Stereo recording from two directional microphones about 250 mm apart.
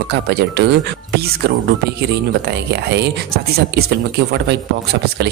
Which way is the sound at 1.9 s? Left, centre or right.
Right.